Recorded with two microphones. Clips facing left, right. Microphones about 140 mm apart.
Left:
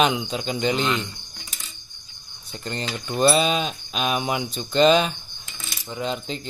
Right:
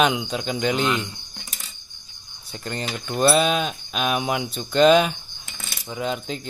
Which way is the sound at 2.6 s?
5° right (ahead or behind).